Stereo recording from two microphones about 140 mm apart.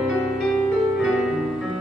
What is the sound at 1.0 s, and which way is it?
Music, centre (ahead or behind).